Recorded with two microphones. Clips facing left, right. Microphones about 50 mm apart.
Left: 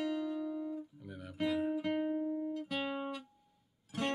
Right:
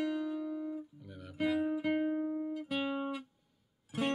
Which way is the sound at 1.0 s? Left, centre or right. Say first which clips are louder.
Right 2 dB; centre.